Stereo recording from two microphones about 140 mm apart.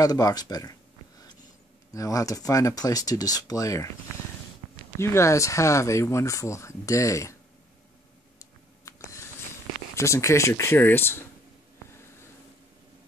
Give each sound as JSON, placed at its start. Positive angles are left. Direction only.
{"t": 0.0, "sound": "speech", "side_deg": 25}
{"t": 2.0, "sound": "speech", "side_deg": 25}
{"t": 4.9, "sound": "speech", "side_deg": 20}
{"t": 8.8, "sound": "a sound", "side_deg": 20}
{"t": 9.9, "sound": "speech", "side_deg": 20}